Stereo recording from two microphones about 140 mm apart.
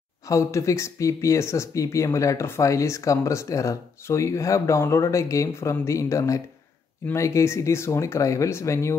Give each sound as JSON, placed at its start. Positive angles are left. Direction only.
{"t": 0.3, "sound": "speech", "side_deg": 20}